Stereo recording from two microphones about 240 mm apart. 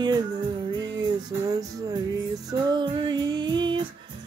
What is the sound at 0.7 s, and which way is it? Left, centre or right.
Music, centre.